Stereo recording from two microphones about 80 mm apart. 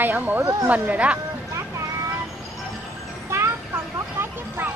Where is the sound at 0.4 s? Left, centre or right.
Right.